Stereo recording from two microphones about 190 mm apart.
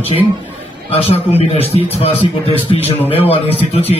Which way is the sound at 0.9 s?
30° left (ahead or behind).